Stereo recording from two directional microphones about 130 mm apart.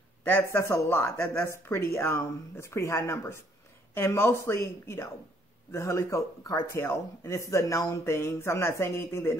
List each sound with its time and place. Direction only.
0.2 s a man's voice: 15° left (ahead or behind)